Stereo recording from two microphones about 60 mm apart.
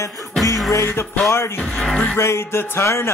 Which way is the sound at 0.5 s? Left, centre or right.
Left.